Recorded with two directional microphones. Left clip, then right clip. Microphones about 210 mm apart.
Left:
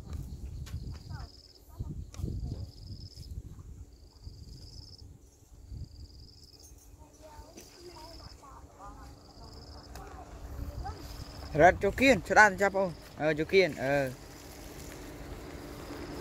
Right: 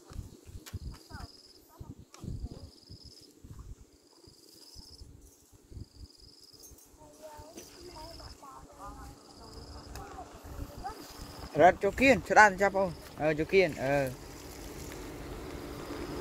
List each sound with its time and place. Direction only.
0.9 s cricket: 55° right (ahead or behind)
7.2 s boat: 45° right (ahead or behind)
11.1 s a sound: 55° right (ahead or behind)
11.5 s speech: 20° left (ahead or behind)
14.1 s vehicle: 55° right (ahead or behind)